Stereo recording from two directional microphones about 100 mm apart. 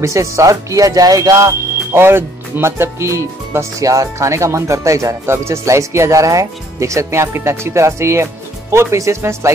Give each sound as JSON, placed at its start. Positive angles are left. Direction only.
{"t": 0.0, "sound": "speech", "side_deg": -30}